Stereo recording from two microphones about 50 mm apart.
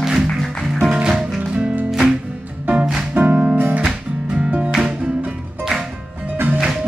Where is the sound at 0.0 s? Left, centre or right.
Centre.